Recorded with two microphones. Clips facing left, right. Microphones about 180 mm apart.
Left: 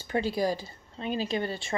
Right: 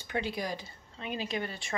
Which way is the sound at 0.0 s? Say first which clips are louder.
Left 7 dB; 35° left (ahead or behind).